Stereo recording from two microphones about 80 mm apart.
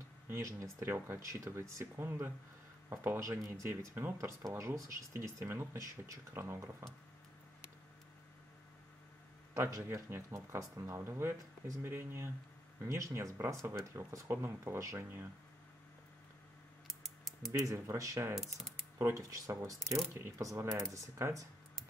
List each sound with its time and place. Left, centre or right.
0.3 s speech: right
9.5 s a man's voice: right
16.8 s mechanisms: centre
17.5 s speech: right
18.3 s speech: centre
18.9 s speech: right